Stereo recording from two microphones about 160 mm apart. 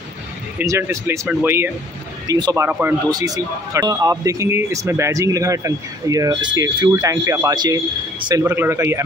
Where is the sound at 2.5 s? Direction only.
15° right (ahead or behind).